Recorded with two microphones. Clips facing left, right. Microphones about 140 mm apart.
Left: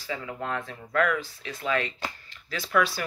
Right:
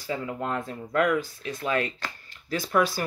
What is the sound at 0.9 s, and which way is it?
Speech, 20° right (ahead or behind).